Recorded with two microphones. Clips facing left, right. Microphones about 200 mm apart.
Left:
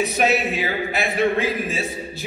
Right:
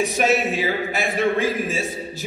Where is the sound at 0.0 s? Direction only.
45° right (ahead or behind).